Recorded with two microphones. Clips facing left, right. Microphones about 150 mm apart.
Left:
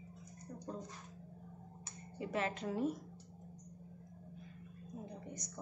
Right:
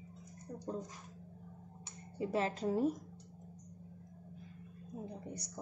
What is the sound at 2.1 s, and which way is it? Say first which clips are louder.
Speech: right 3 dB; 35° right (ahead or behind).